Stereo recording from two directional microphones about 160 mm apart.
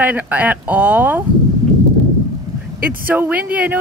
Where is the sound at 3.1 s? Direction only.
10° right (ahead or behind).